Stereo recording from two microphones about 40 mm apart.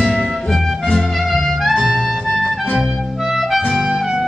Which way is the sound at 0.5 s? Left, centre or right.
Centre.